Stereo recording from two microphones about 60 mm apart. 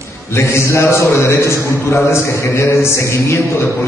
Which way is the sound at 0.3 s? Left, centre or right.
Left.